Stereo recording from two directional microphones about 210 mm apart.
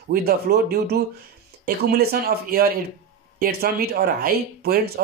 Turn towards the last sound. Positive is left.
turn(degrees=-45)  # may be behind; listen again after turning